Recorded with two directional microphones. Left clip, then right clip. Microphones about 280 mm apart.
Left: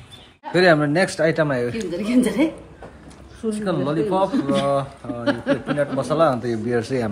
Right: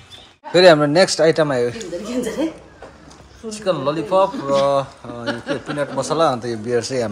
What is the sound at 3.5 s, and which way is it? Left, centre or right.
Speech, centre.